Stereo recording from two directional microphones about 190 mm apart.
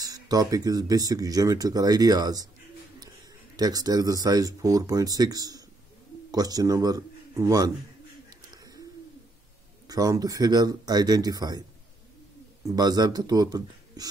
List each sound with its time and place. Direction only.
0.0 s speech: 20° right (ahead or behind)
3.5 s speech: 20° right (ahead or behind)
8.3 s bird: 20° right (ahead or behind)
9.8 s speech: 20° right (ahead or behind)
12.6 s speech: 20° right (ahead or behind)